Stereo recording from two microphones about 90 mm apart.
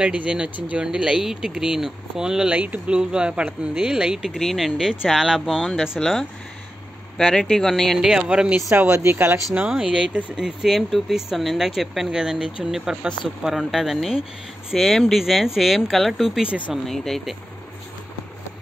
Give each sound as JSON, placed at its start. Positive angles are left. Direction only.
{"t": 0.0, "sound": "speech", "side_deg": -15}
{"t": 5.5, "sound": "speech", "side_deg": 5}
{"t": 8.6, "sound": "speech", "side_deg": -30}
{"t": 9.5, "sound": "speech", "side_deg": -10}
{"t": 16.4, "sound": "speech", "side_deg": -15}
{"t": 16.7, "sound": "speech", "side_deg": 5}